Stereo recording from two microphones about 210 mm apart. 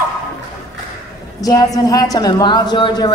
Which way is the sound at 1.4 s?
15° left (ahead or behind).